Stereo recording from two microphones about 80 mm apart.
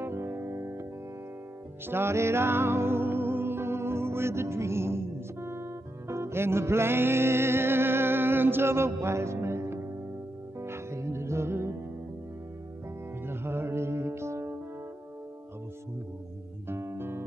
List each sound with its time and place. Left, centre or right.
0.0 s music: right
1.9 s music: right
13.2 s music: right
16.6 s music: right